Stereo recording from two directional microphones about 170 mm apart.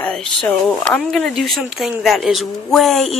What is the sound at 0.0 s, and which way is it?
A woman's voice, 5° left (ahead or behind).